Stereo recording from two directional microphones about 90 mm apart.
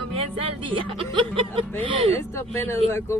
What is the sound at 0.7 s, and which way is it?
A woman's voice, 70° right (ahead or behind).